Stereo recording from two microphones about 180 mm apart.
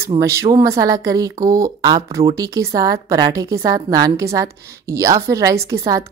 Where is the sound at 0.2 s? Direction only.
15° right (ahead or behind).